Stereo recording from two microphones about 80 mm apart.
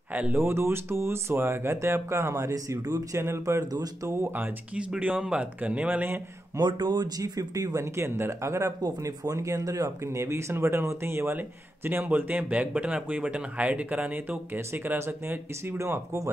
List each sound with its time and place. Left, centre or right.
0.1 s speech: right
3.7 s speech: right
4.7 s speech: centre
6.8 s speech: right